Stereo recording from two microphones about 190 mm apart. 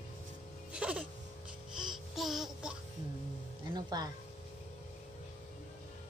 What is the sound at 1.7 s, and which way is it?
Music, centre (ahead or behind).